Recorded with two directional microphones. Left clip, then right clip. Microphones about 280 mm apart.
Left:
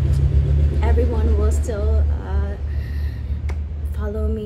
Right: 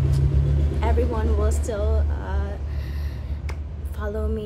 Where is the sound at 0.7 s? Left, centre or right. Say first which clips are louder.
Left 1 dB; centre.